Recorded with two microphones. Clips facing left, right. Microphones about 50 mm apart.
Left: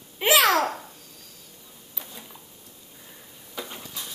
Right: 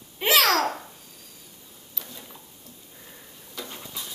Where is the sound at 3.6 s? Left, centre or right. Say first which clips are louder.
Left 2 dB; centre.